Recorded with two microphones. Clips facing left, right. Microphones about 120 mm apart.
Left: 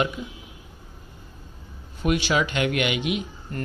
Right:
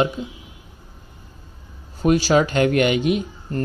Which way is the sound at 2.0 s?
35° right (ahead or behind).